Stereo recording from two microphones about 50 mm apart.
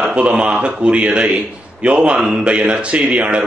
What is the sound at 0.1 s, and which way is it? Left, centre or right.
A man's voice, right.